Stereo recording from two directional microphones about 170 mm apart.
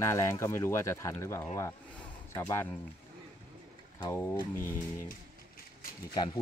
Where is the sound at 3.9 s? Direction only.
15° left (ahead or behind).